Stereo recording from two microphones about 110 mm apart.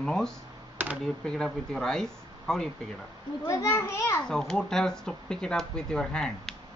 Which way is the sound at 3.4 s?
30° left (ahead or behind).